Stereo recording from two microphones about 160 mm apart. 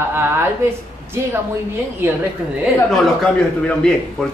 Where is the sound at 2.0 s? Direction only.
15° right (ahead or behind).